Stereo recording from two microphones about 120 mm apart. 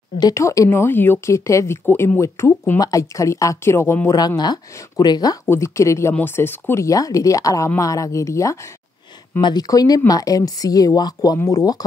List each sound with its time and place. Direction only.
0.2 s speech: 25° left (ahead or behind)
4.4 s speech: 35° left (ahead or behind)